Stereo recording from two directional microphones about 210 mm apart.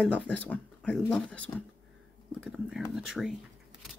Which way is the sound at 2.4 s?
Centre (ahead or behind).